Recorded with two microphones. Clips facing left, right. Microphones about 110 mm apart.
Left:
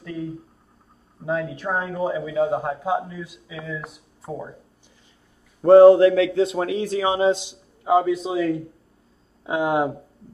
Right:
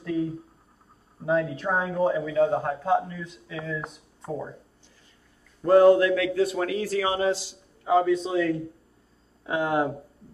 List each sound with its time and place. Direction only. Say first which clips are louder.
0.0 s a sound: right 4 dB; centre (ahead or behind)
1.2 s a man's voice: right 1 dB; centre (ahead or behind)
5.7 s a man's voice: left 6 dB; 30° left (ahead or behind)